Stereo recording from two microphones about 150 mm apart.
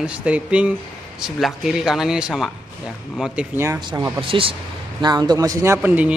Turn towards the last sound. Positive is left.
turn(degrees=-10)  # may be behind; listen again after turning